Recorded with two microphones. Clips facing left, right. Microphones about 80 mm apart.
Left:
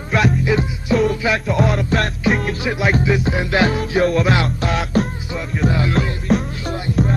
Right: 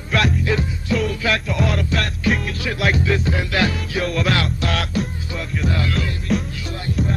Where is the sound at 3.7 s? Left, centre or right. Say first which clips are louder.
Left 6 dB; left.